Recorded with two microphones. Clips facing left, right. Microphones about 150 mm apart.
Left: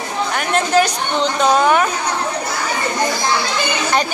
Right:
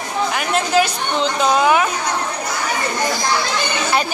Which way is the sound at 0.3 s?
5° right (ahead or behind).